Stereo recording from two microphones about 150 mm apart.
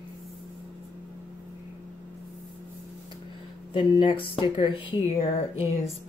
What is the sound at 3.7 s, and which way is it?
Speech, 30° left (ahead or behind).